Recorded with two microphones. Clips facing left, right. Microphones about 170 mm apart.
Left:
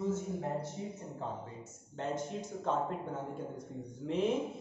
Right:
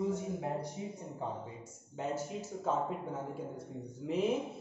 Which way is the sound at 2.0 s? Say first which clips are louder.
Even; 10° right (ahead or behind).